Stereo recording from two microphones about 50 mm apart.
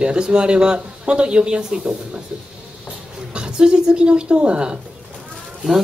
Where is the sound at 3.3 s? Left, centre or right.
Centre.